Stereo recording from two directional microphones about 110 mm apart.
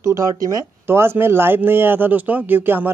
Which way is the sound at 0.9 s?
20° right (ahead or behind).